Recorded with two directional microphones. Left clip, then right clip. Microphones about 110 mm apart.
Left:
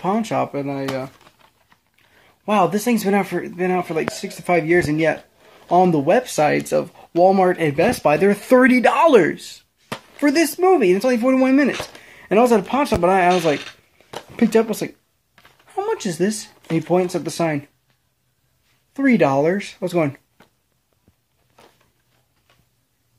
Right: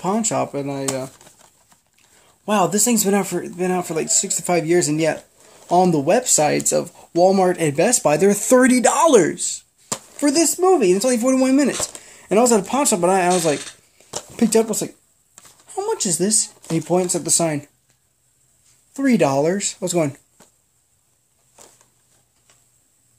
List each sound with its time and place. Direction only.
0.0 s speech: 25° right (ahead or behind)
2.2 s speech: 25° right (ahead or behind)
12.7 s speech: 35° right (ahead or behind)
18.9 s speech: 25° right (ahead or behind)
21.6 s a sound: 50° right (ahead or behind)